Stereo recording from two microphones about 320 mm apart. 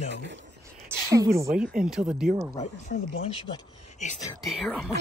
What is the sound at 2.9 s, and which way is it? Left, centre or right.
Speech, left.